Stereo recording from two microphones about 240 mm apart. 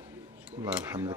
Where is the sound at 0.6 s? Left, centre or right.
Centre.